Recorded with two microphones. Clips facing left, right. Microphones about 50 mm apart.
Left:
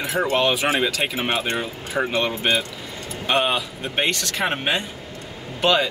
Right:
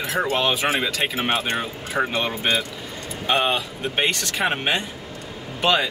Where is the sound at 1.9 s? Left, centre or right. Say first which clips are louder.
Even; right.